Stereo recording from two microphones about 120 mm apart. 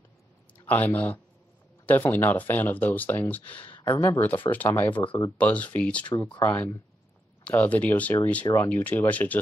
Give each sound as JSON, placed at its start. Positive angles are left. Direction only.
{"t": 0.7, "sound": "speech", "side_deg": 15}